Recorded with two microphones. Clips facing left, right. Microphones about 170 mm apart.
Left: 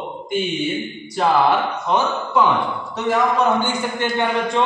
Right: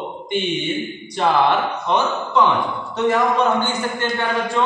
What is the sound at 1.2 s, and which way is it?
A man's voice, 5° left (ahead or behind).